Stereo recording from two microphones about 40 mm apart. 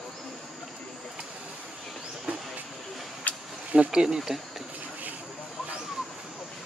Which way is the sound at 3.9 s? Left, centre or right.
Centre.